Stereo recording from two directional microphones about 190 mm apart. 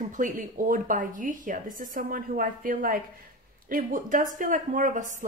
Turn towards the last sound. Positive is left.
turn(degrees=-45)  # may be behind; listen again after turning